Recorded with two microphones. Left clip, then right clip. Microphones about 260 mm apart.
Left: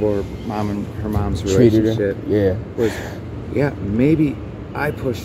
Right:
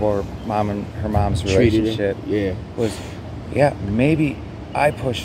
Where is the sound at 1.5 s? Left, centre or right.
Centre.